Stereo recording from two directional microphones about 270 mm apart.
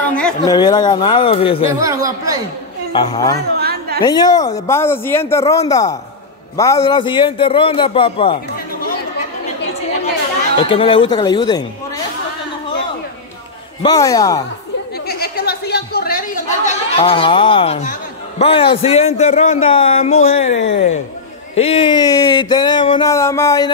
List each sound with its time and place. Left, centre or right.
0.1 s a sound: centre
0.6 s speech: centre
1.8 s speech: centre
2.9 s speech: centre
3.5 s chatter: right
4.0 s a man's voice: centre
10.6 s speech: centre
13.8 s speech: centre
15.0 s a sound: left
18.4 s a man's voice: centre